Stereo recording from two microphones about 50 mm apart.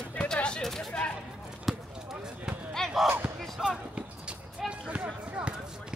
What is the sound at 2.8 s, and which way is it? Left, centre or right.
Basketball bounce, centre.